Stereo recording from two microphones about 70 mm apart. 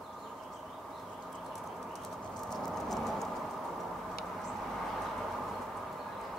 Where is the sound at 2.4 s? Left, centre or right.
Centre.